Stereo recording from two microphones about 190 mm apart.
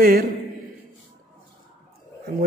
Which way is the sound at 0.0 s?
50° right (ahead or behind).